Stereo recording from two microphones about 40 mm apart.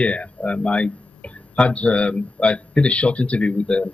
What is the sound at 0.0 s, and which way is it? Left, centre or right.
Speech, left.